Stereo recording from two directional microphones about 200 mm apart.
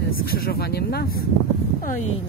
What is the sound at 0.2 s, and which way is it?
Speech, 50° left (ahead or behind).